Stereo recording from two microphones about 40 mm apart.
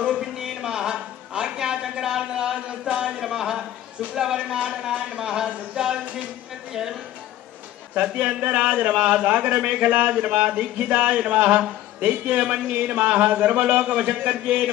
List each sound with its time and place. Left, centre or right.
0.0 s a sound: centre
2.8 s a man's voice: centre
7.9 s speech: right